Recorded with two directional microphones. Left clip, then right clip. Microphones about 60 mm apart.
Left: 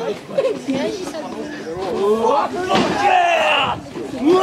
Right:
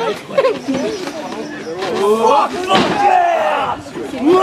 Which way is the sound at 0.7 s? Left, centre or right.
Right.